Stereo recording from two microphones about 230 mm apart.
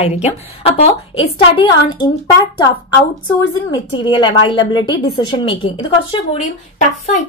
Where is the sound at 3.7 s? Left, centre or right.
Left.